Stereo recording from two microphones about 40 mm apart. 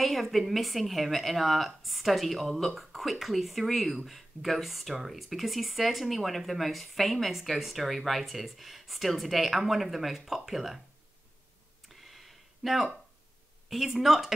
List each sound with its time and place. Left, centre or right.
0.0 s speech: centre
11.9 s a sound: centre
13.7 s a woman's voice: centre